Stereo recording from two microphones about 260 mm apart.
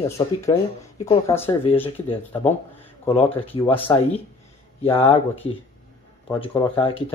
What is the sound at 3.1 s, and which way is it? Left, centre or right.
Speech, left.